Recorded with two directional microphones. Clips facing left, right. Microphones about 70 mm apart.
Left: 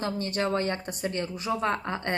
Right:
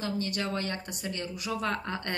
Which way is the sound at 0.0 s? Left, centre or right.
Left.